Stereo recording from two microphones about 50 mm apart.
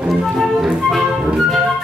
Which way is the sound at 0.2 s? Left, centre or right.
Centre.